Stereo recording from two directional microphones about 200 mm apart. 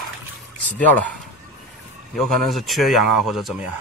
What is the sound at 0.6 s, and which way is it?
Speech, 10° left (ahead or behind).